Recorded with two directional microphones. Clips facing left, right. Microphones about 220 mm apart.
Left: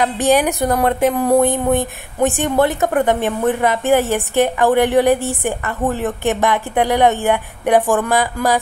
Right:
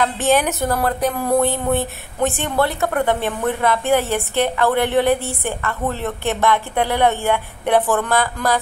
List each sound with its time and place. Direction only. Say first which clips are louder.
0.0 s a woman's voice: left 3 dB; 15° left (ahead or behind)